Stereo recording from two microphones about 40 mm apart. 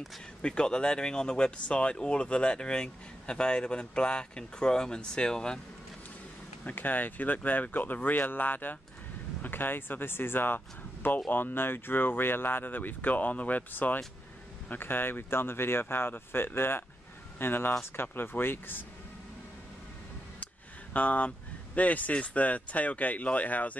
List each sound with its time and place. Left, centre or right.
0.4 s speech: left
6.6 s speech: left
14.7 s speech: left
20.9 s speech: left